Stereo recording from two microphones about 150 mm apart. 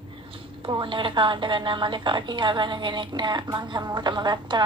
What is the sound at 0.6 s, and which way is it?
A woman's voice, 35° right (ahead or behind).